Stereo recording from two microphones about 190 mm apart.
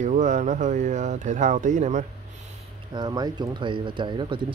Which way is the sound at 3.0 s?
20° right (ahead or behind).